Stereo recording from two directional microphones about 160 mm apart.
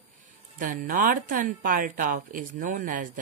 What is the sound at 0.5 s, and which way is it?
A woman's voice, 55° right (ahead or behind).